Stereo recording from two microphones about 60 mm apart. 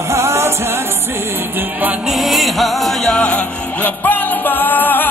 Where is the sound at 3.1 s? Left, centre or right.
Centre.